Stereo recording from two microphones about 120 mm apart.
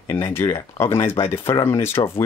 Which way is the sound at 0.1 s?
20° left (ahead or behind).